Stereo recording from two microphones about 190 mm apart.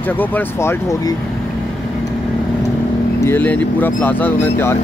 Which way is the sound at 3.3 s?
10° left (ahead or behind).